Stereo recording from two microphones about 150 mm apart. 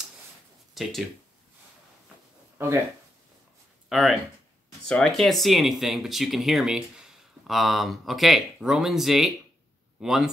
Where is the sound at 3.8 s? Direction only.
Centre (ahead or behind).